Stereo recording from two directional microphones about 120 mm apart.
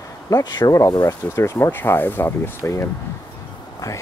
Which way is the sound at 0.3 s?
30° left (ahead or behind).